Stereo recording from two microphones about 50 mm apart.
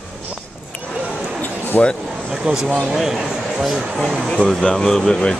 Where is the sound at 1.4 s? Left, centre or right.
Left.